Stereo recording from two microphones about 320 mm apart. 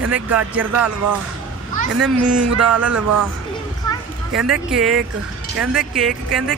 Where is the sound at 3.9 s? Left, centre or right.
Centre.